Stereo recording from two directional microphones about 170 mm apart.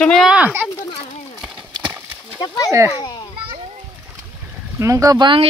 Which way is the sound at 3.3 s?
30° right (ahead or behind).